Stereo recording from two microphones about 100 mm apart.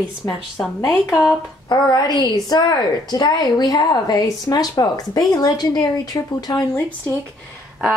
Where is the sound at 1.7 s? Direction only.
40° left (ahead or behind).